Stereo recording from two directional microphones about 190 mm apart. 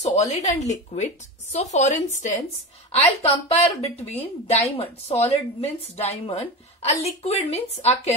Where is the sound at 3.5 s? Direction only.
30° left (ahead or behind).